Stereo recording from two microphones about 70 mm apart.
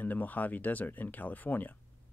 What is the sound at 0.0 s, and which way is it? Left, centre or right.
Speech, left.